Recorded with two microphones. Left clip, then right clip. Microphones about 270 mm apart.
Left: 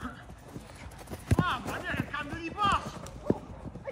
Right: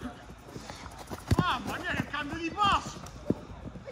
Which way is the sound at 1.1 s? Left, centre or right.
Centre.